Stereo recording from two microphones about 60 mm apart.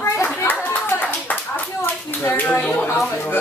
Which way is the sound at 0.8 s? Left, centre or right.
Left.